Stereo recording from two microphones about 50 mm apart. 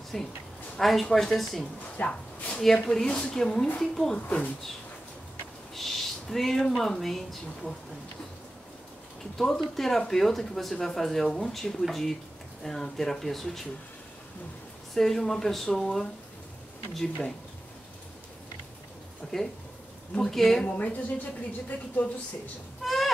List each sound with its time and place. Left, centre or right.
0.1 s speech: centre
2.0 s speech: left
2.6 s speech: centre
3.1 s speech: centre
4.3 s speech: left
5.8 s a sound: centre
6.8 s speech: centre
9.4 s speech: centre
15.0 s speech: centre
19.3 s speech: centre
20.8 s speech: left
22.8 s a sound: centre